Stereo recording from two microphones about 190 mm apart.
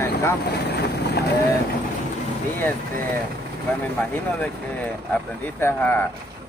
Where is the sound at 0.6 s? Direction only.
60° left (ahead or behind).